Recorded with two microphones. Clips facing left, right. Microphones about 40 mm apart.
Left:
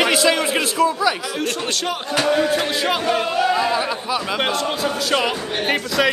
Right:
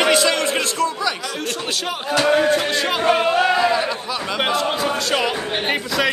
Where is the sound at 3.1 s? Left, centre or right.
Right.